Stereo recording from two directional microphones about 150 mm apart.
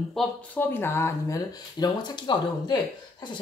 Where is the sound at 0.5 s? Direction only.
15° left (ahead or behind); by 2.8 s 30° left (ahead or behind).